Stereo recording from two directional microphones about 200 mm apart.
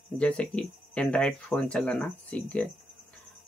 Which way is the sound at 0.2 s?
5° left (ahead or behind).